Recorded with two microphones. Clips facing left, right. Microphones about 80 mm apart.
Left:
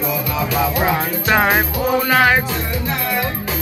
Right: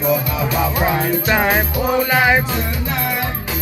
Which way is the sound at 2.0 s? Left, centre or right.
Centre.